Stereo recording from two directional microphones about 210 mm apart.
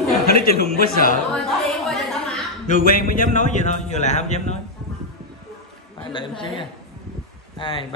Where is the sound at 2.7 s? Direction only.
40° left (ahead or behind).